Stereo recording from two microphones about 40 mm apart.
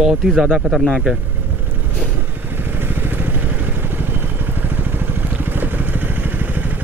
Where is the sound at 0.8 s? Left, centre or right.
Centre.